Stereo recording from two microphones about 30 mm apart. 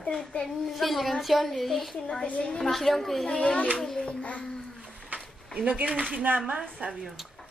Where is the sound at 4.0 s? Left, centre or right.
Left.